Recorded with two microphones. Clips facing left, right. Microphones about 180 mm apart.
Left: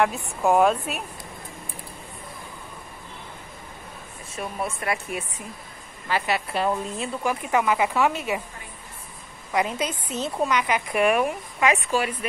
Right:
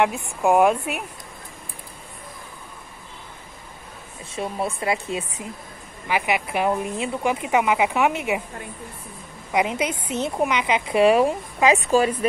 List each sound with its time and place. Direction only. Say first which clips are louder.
0.4 s a woman's voice: right 2 dB; 10° right (ahead or behind)
4.4 s a woman's voice: right 4 dB; 25° right (ahead or behind)
9.5 s a woman's voice: right 3 dB; 20° right (ahead or behind); by 12.3 s 35° right (ahead or behind)